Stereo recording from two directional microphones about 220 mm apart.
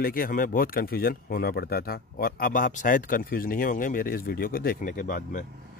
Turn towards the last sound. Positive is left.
turn(degrees=35)  # may be behind; listen again after turning